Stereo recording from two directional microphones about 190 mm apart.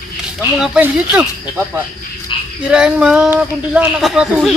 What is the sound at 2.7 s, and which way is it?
Speech, 5° right (ahead or behind).